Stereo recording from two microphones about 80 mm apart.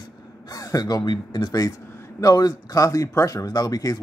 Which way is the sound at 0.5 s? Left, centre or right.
Left.